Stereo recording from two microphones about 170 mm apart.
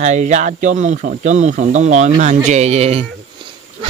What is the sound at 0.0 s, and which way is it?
Speech, 45° right (ahead or behind).